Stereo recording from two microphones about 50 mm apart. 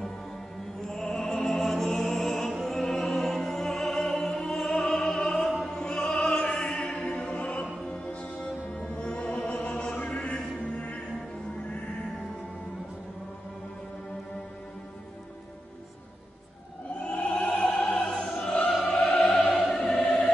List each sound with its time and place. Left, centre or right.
0.8 s music: centre
3.0 s music: centre
4.8 s opera: centre; by 7.7 s left
7.8 s music: centre
17.0 s opera: left
18.6 s opera: left